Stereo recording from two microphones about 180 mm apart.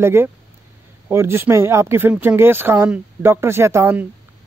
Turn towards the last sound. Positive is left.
turn(degrees=-15)  # may be behind; listen again after turning